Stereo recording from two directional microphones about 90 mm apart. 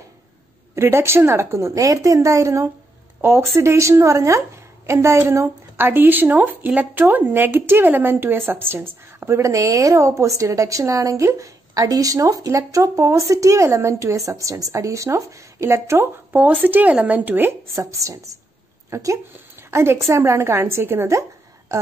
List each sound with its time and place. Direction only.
0.7 s speech: 30° right (ahead or behind)
16.3 s a woman's voice: 20° right (ahead or behind)